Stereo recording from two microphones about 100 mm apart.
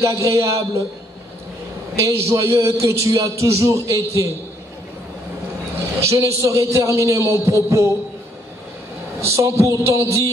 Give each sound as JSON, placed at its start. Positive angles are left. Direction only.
{"t": 0.0, "sound": "a man's voice", "side_deg": -30}
{"t": 2.0, "sound": "a man's voice", "side_deg": -30}
{"t": 5.9, "sound": "a man's voice", "side_deg": -30}
{"t": 9.2, "sound": "a woman's voice", "side_deg": -30}